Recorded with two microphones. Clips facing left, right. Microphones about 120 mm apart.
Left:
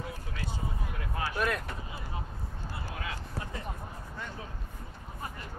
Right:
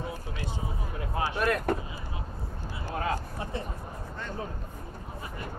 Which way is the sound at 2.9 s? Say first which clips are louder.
Right 11 dB; 40° right (ahead or behind).